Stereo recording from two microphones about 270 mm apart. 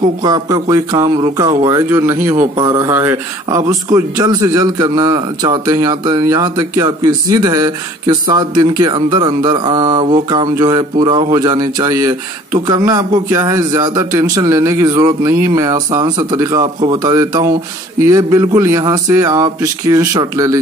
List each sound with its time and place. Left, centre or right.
0.2 s speech: centre
2.3 s a man's voice: right
2.6 s speech: centre